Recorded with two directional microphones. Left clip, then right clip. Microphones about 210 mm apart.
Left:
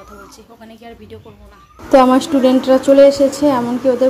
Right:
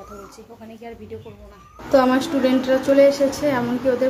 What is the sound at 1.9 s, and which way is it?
A woman's voice, 20° left (ahead or behind).